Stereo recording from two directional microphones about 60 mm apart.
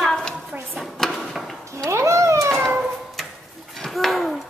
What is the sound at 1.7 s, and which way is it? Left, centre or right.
Cat, right.